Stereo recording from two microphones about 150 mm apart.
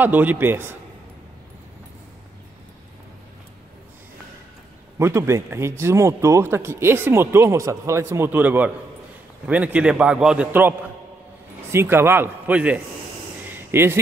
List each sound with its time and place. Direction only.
0.0 s speech: 10° right (ahead or behind)
4.9 s speech: 20° right (ahead or behind)
11.7 s speech: 15° right (ahead or behind)
13.5 s a sound: 15° right (ahead or behind)